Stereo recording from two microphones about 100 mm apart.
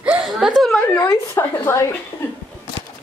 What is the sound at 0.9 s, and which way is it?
Speech, 25° left (ahead or behind).